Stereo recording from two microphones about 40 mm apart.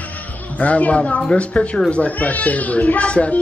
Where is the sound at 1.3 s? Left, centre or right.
Left.